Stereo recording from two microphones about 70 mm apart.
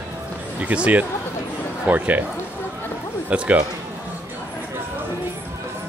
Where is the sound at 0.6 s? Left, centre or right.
Centre.